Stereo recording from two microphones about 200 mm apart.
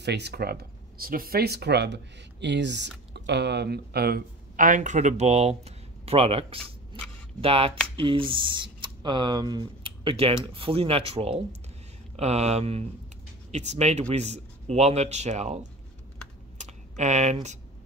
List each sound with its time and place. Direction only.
0.0 s speech: 55° right (ahead or behind); by 15.6 s 35° right (ahead or behind)
16.5 s computer keyboard: 35° right (ahead or behind)